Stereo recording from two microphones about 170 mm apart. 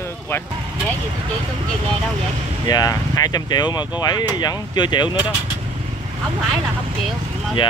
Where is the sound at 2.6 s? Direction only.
20° left (ahead or behind).